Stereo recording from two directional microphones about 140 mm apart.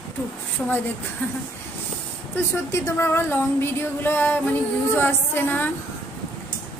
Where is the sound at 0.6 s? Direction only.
10° left (ahead or behind).